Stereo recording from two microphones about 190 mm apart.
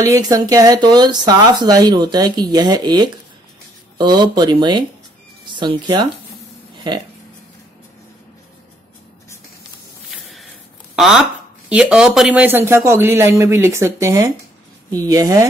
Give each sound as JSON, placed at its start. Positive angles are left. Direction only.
{"t": 0.0, "sound": "speech", "side_deg": -20}
{"t": 10.1, "sound": "a sound", "side_deg": 0}
{"t": 11.0, "sound": "a man's voice", "side_deg": 0}